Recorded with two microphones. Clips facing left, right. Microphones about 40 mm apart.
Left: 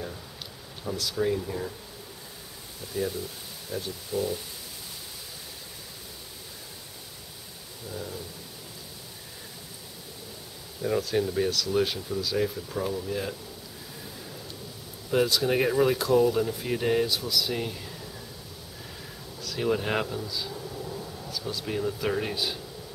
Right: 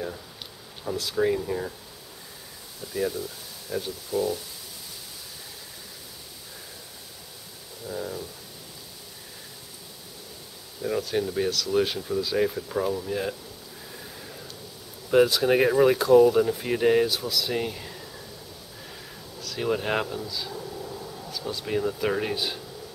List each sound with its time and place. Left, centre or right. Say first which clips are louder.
0.8 s speech: right 3 dB; centre
2.9 s speech: right 2 dB; centre
3.7 s speech: right 3 dB; centre
7.9 s speech: right 5 dB; centre
10.8 s speech: even; centre
15.0 s speech: right 5 dB; centre
19.4 s speech: even; centre